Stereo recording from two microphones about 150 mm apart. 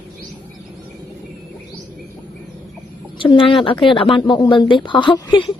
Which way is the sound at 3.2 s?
35° left (ahead or behind).